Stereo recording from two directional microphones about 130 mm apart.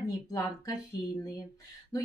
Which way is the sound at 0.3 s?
25° left (ahead or behind).